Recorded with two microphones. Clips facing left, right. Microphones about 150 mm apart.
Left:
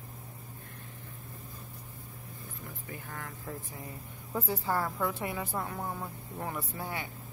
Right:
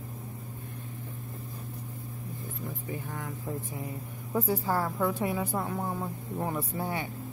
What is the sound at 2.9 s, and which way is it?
A woman's voice, 20° right (ahead or behind).